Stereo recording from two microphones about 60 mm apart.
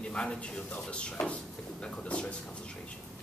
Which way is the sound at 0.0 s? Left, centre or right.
Centre.